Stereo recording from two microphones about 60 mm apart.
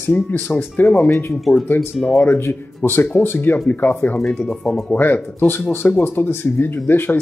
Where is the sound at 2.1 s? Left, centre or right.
Left.